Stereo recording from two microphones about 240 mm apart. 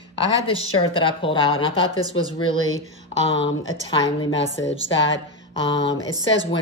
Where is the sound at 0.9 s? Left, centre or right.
Left.